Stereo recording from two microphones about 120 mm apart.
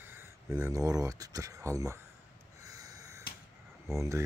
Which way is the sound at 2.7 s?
30° right (ahead or behind).